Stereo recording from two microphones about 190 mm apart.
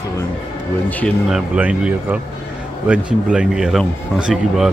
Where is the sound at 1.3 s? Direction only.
5° right (ahead or behind).